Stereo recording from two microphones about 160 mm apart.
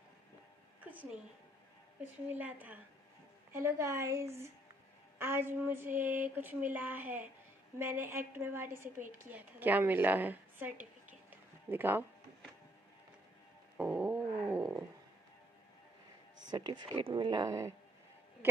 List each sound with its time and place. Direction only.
2.3 s a woman's voice: 10° right (ahead or behind)
13.7 s dog: 10° right (ahead or behind)
16.4 s speech: 25° right (ahead or behind)